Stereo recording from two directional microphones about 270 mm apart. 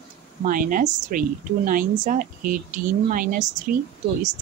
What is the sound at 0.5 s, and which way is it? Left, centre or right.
A woman's voice, right.